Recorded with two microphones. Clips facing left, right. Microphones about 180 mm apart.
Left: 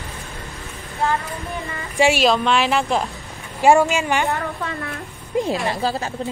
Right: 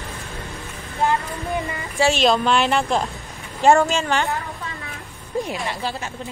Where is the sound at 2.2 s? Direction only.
Centre (ahead or behind).